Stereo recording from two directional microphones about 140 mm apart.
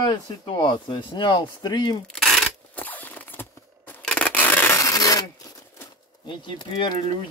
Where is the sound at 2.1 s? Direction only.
Centre (ahead or behind).